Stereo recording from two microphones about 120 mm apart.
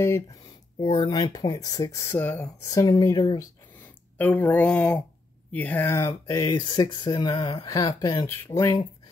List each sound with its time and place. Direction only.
0.0 s speech: 25° left (ahead or behind)
0.8 s speech: 35° left (ahead or behind)
2.0 s speech: 15° left (ahead or behind)
2.6 s speech: 30° left (ahead or behind)
3.8 s speech: 15° left (ahead or behind)
6.2 s speech: 35° left (ahead or behind)